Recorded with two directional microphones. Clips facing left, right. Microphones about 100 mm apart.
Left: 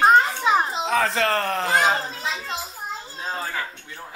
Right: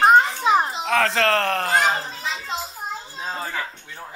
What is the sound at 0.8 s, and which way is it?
Speech, 70° right (ahead or behind).